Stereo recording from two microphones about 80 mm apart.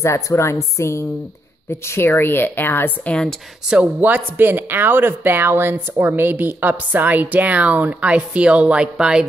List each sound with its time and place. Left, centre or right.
0.0 s a woman's voice: left
3.1 s speech: centre
3.7 s speech: centre